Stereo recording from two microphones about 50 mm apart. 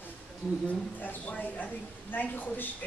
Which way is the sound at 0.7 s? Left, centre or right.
Left.